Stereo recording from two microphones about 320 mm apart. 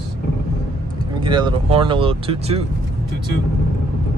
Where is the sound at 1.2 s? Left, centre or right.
Centre.